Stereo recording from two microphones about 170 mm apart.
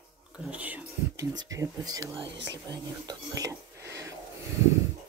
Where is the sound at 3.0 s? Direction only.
20° right (ahead or behind).